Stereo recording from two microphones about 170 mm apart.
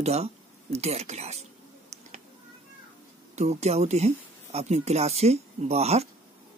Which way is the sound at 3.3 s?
40° right (ahead or behind).